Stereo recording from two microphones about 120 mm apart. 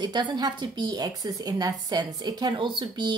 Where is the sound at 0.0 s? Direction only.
40° right (ahead or behind).